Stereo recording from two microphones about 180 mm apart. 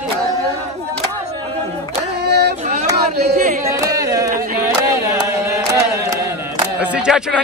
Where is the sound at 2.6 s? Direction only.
40° right (ahead or behind).